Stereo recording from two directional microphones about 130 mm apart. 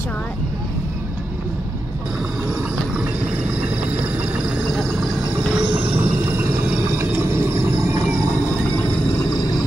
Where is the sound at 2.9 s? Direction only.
10° right (ahead or behind).